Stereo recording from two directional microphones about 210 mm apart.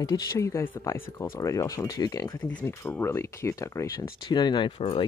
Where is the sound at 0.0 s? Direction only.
15° left (ahead or behind).